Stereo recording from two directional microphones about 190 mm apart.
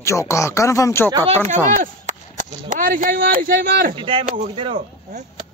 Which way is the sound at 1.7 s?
45° right (ahead or behind).